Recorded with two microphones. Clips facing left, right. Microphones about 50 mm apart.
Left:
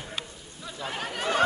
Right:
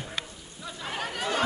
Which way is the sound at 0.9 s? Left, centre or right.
Centre.